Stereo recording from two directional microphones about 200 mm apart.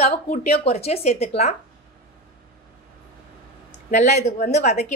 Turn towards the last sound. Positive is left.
turn(degrees=35)  # may be behind; listen again after turning